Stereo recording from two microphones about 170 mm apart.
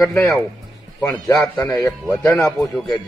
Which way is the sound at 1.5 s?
25° left (ahead or behind).